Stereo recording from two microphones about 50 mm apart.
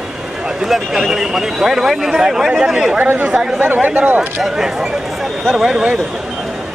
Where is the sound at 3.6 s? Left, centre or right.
Right.